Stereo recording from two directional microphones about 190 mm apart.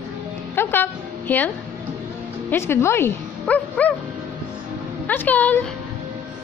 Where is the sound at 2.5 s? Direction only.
15° left (ahead or behind).